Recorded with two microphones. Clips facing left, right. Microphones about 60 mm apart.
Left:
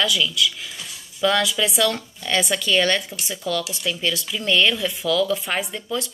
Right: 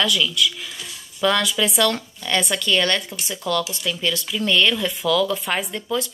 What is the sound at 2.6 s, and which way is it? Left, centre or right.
Speech, centre.